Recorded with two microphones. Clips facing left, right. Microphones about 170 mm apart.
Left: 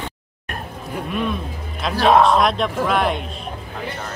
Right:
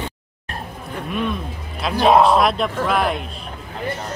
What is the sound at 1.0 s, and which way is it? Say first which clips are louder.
A man's voice: right 1 dB; centre (ahead or behind).